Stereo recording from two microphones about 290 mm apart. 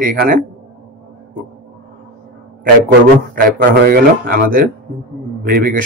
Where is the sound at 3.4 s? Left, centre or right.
Right.